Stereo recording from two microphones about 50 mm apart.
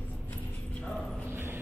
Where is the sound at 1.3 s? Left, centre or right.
Right.